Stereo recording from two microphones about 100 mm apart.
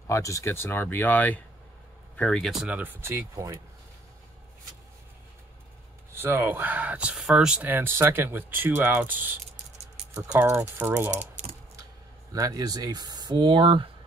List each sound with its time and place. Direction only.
0.0 s speech: 30° left (ahead or behind); by 2.7 s centre (ahead or behind)
2.7 s speech: 20° right (ahead or behind)
6.1 s speech: 20° right (ahead or behind)
7.6 s speech: 20° right (ahead or behind)
10.4 s speech: 25° right (ahead or behind)
12.3 s speech: 40° right (ahead or behind); by 13.8 s 55° right (ahead or behind)